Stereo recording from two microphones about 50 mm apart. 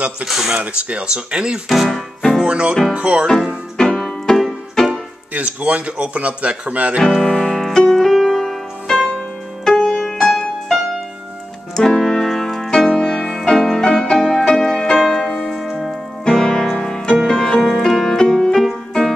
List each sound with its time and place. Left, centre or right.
0.2 s speech: centre
1.7 s speech: centre
2.4 s speech: centre
4.0 s music: centre
5.3 s speech: right
7.1 s music: centre
15.9 s piano: centre
16.7 s music: centre